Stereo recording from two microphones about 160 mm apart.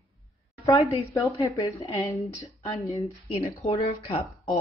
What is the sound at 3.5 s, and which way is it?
Speech, 35° left (ahead or behind).